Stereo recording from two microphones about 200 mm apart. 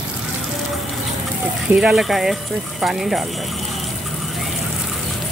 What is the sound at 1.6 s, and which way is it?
Speech, centre (ahead or behind).